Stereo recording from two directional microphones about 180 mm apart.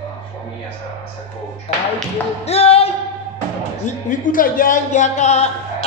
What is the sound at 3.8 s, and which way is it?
Speech, 45° left (ahead or behind).